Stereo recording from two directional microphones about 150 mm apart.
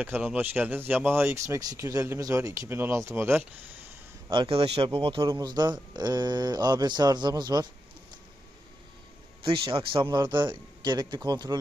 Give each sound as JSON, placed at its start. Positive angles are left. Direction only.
{"t": 0.0, "sound": "speech", "side_deg": -10}
{"t": 4.3, "sound": "speech", "side_deg": -35}
{"t": 9.4, "sound": "speech", "side_deg": -35}